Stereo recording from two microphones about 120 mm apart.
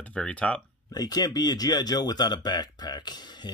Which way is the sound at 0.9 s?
35° left (ahead or behind).